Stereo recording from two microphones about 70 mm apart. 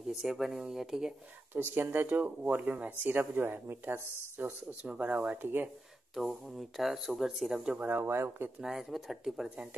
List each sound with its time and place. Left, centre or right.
0.1 s speech: centre
1.5 s speech: right
6.8 s speech: centre
7.8 s speech: right
8.5 s speech: centre